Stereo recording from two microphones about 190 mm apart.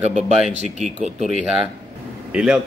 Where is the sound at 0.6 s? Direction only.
40° right (ahead or behind).